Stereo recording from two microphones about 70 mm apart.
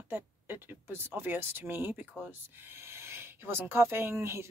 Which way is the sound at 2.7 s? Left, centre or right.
Right.